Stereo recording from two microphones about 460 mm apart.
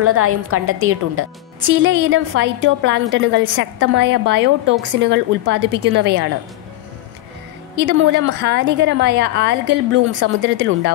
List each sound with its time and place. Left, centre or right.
0.0 s a woman's voice: right
7.7 s a woman's voice: right